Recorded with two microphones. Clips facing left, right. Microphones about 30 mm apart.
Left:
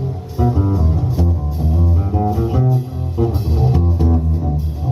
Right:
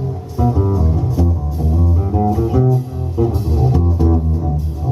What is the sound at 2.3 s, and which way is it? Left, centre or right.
Music, centre.